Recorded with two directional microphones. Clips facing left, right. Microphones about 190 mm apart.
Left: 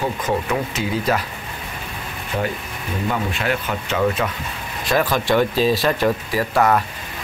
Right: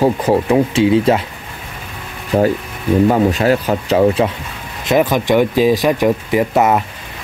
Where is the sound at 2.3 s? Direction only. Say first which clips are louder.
Right 10 dB; 50° right (ahead or behind); by 4.3 s 30° right (ahead or behind).